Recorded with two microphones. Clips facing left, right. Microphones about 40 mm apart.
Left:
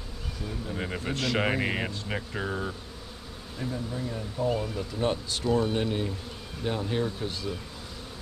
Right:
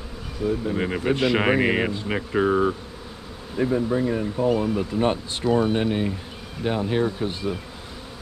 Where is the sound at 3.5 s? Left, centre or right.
Right.